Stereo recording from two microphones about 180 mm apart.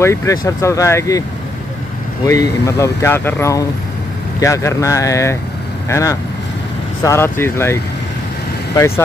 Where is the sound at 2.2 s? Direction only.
15° left (ahead or behind).